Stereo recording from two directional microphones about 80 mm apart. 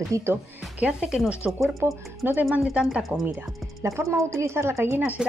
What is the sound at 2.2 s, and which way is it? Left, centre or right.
Speech, right.